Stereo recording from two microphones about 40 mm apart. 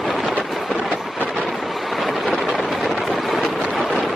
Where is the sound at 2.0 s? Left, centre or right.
Centre.